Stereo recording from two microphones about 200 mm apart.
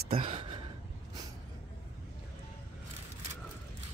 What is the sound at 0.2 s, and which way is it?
Gasp, 25° right (ahead or behind).